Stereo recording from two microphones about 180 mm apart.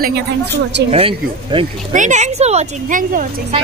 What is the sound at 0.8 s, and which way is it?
Speech, 30° right (ahead or behind).